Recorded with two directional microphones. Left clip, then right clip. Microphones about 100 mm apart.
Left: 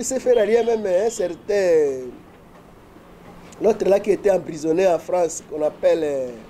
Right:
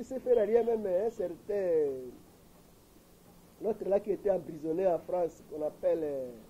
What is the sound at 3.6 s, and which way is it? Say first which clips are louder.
A man's voice: left 13 dB; 15° left (ahead or behind).